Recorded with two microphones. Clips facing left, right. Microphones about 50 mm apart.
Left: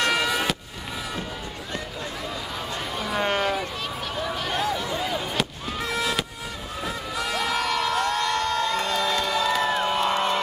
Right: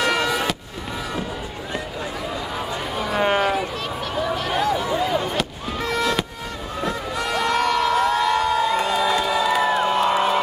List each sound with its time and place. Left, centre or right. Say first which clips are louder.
0.0 s fireworks: right 2 dB; centre
2.7 s a sound: right 3 dB; centre
5.2 s fireworks: right 3 dB; centre
6.8 s crowd: right 4 dB; centre